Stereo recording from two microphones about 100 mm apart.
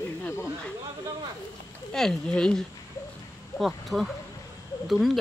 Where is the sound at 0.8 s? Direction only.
35° right (ahead or behind).